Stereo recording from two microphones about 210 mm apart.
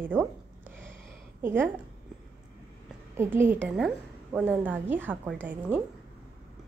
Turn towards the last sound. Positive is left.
turn(degrees=-10)  # may be behind; listen again after turning